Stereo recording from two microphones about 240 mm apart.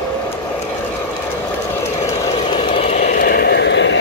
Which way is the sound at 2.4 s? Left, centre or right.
Left.